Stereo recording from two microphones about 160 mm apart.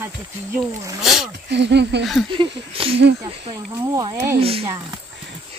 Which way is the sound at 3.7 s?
20° right (ahead or behind).